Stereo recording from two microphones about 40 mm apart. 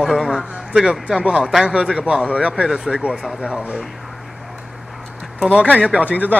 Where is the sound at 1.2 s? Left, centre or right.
Right.